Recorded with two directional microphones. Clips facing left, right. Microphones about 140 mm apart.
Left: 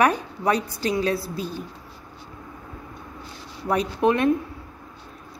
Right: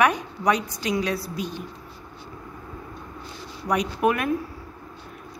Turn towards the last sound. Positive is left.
turn(degrees=25)  # may be behind; listen again after turning